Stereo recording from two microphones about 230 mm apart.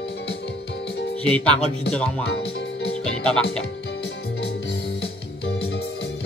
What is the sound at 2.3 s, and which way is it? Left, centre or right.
Music, left.